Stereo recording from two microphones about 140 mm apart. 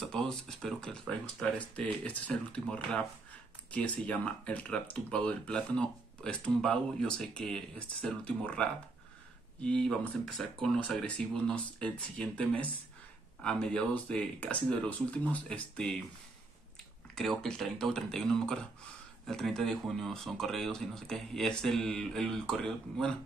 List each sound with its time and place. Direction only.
0.0 s speech: 5° left (ahead or behind)
17.1 s speech: 5° left (ahead or behind)